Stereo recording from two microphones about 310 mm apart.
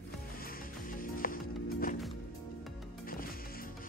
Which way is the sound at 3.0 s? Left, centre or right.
Left.